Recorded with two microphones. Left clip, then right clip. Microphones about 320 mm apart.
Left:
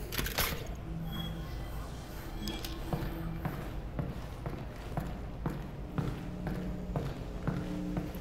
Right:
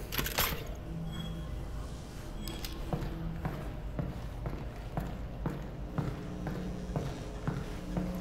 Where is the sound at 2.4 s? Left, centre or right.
Centre.